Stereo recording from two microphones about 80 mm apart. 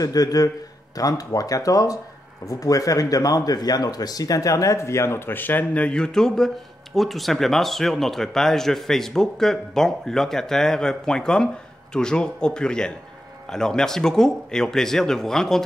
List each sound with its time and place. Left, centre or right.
0.0 s speech: left; by 15.6 s centre